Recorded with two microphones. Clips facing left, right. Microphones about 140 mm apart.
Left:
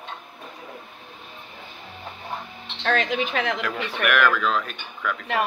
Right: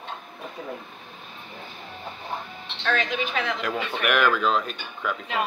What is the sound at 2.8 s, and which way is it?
Speech, 60° left (ahead or behind).